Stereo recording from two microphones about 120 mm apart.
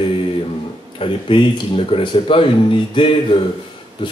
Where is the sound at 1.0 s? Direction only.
45° left (ahead or behind).